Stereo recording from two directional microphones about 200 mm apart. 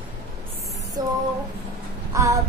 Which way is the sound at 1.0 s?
20° right (ahead or behind).